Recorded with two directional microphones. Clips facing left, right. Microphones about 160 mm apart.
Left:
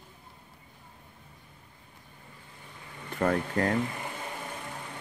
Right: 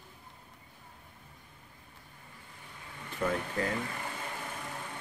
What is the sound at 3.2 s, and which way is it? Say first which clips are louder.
Speech: left 5 dB; 60° left (ahead or behind).